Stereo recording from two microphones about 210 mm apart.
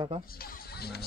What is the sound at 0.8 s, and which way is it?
Speech, 50° left (ahead or behind).